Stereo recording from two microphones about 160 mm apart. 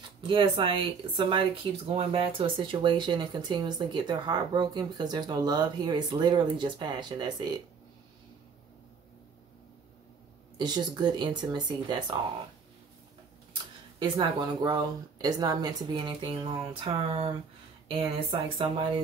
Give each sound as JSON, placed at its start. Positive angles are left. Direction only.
{"t": 0.3, "sound": "speech", "side_deg": -30}
{"t": 10.6, "sound": "speech", "side_deg": -25}
{"t": 13.9, "sound": "speech", "side_deg": -30}